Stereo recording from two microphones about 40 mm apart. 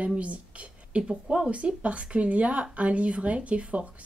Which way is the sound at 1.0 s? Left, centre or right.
Right.